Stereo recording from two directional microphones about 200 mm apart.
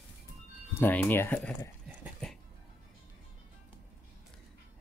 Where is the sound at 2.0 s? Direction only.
Centre (ahead or behind).